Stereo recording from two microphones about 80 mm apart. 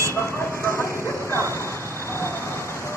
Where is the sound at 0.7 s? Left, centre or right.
Left.